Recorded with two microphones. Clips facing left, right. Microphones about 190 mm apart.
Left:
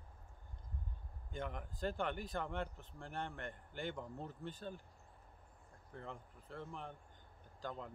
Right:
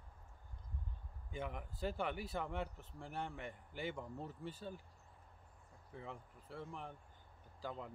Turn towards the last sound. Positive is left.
turn(degrees=-5)  # may be behind; listen again after turning